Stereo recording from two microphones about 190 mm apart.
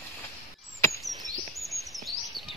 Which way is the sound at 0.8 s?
15° left (ahead or behind).